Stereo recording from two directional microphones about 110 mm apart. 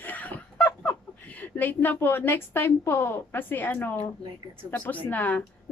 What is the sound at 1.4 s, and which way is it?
A woman's voice, 15° left (ahead or behind).